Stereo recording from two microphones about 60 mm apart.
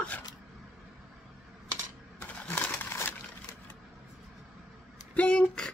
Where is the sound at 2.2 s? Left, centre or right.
Left.